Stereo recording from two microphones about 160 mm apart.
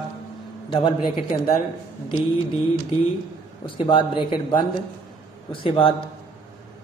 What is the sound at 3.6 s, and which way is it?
Speech, 30° left (ahead or behind).